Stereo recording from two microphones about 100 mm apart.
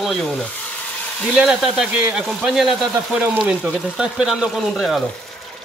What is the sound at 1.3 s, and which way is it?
A man's voice, 5° right (ahead or behind).